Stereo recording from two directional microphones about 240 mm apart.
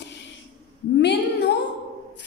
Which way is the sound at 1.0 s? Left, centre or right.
Left.